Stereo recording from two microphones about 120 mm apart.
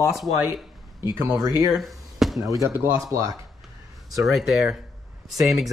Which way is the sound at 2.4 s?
30° right (ahead or behind).